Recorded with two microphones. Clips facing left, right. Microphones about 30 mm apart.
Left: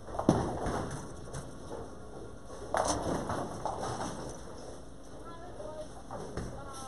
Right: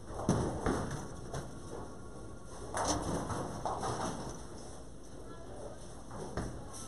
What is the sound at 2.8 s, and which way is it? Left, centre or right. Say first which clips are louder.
Rain: left 3 dB; centre.